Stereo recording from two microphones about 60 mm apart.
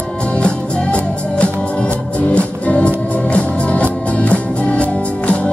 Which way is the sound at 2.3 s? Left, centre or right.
Left.